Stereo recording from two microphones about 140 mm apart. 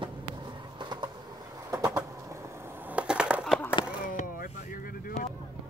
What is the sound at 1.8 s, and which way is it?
Bird, 20° right (ahead or behind).